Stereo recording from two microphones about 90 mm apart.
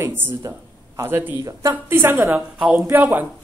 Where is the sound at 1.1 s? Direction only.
20° right (ahead or behind).